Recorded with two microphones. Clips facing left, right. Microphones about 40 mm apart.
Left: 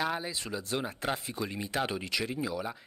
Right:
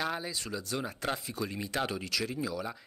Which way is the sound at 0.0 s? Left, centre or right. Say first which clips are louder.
Left 2 dB; centre.